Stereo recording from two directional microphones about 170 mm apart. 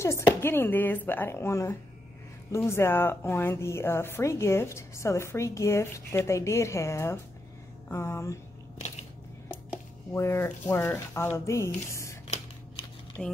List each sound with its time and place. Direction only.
0.0 s a woman's voice: 15° left (ahead or behind)
10.1 s a woman's voice: 15° left (ahead or behind)
13.2 s speech: 5° left (ahead or behind)